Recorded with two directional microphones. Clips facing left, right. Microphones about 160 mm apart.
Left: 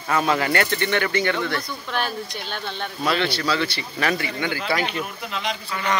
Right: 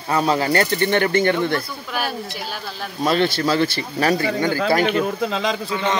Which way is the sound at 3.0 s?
40° right (ahead or behind).